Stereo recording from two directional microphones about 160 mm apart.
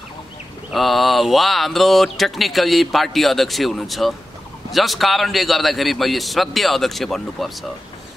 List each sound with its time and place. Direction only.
0.7 s speech: centre (ahead or behind)